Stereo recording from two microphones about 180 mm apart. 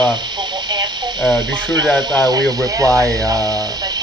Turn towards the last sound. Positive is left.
turn(degrees=-20)  # may be behind; listen again after turning